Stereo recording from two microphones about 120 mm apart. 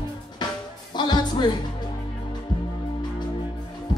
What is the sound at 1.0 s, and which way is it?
Music, 35° left (ahead or behind).